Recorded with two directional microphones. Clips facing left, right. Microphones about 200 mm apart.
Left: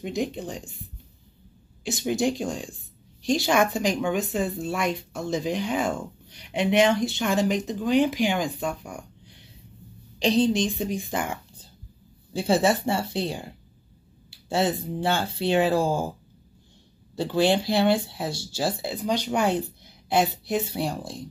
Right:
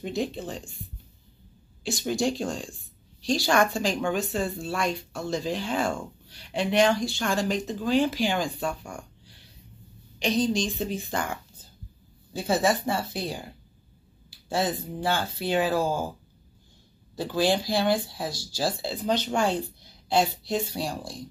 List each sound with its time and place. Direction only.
0.0 s a woman's voice: 15° left (ahead or behind)
0.5 s speech: centre (ahead or behind)
2.0 s speech: 20° left (ahead or behind)
2.4 s speech: centre (ahead or behind)
3.3 s a woman's voice: 20° left (ahead or behind)
8.8 s a sound: 20° left (ahead or behind)
10.1 s speech: 30° left (ahead or behind)
12.4 s speech: 30° left (ahead or behind)
14.5 s speech: 25° left (ahead or behind)
17.1 s a woman's voice: 25° left (ahead or behind)